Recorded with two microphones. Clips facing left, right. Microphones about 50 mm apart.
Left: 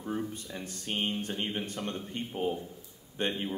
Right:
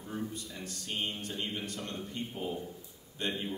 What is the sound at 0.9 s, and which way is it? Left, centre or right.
A man's voice, left.